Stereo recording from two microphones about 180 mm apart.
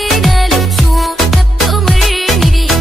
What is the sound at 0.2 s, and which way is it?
Music, centre (ahead or behind).